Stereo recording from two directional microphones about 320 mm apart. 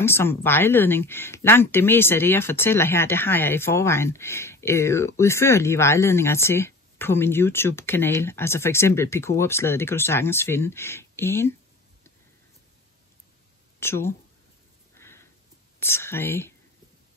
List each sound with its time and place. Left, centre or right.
0.0 s speech: centre
13.7 s speech: centre
15.0 s a sound: centre
15.8 s speech: centre